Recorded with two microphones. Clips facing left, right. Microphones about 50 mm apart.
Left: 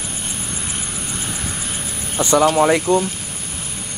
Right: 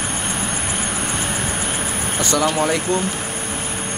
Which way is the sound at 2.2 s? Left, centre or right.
Centre.